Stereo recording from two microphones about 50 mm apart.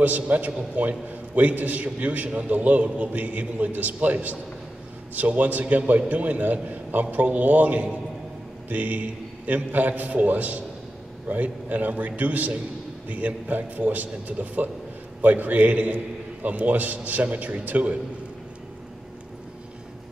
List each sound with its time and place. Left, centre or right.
0.0 s a man's voice: right